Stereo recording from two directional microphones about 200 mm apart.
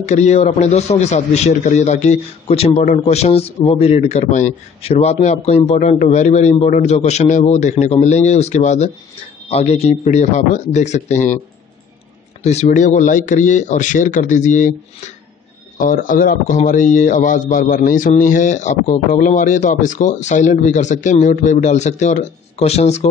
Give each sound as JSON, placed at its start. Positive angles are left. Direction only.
{"t": 0.0, "sound": "a man's voice", "side_deg": 35}
{"t": 12.4, "sound": "a man's voice", "side_deg": 35}